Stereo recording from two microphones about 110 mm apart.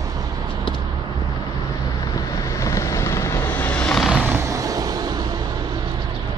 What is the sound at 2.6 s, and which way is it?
Vehicle, 25° left (ahead or behind).